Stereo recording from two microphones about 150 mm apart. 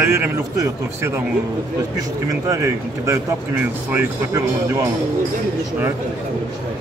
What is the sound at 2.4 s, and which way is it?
Speech, 20° right (ahead or behind).